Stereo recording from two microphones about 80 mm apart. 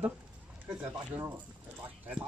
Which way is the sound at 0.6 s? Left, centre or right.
Right.